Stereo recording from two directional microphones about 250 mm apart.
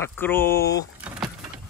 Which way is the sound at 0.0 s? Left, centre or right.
Centre.